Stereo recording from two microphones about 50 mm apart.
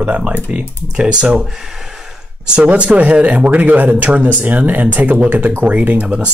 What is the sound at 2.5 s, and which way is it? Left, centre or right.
Speech, right.